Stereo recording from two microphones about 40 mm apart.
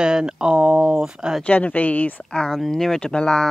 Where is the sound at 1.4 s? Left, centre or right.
Left.